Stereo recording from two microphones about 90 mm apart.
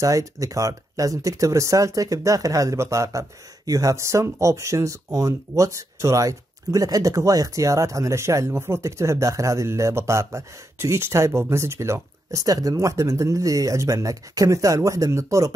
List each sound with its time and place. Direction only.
0.0 s speech: 35° right (ahead or behind)